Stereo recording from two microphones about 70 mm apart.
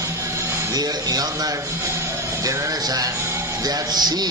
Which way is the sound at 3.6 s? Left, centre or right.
Right.